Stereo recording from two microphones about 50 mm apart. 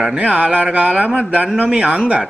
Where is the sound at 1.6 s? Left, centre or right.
Centre.